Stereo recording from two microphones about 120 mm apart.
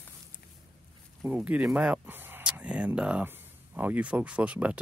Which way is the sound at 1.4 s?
10° right (ahead or behind).